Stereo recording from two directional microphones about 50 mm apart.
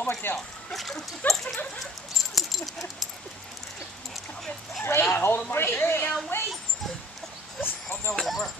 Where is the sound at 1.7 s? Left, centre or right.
Centre.